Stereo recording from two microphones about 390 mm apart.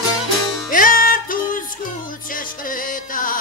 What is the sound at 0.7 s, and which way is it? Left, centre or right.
Music, left.